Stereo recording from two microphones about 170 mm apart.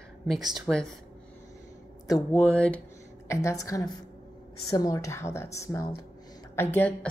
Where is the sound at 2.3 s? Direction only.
10° left (ahead or behind).